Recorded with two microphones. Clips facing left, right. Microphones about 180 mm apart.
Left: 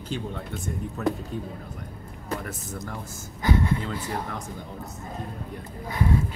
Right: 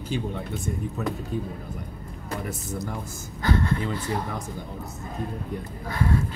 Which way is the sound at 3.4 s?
15° left (ahead or behind).